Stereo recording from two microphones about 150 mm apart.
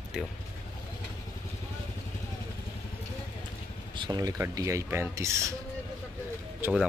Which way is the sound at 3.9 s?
30° right (ahead or behind).